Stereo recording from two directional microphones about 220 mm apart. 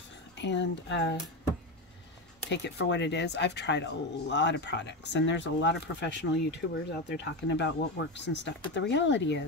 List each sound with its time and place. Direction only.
0.4 s speech: 55° left (ahead or behind)
2.5 s speech: 55° left (ahead or behind)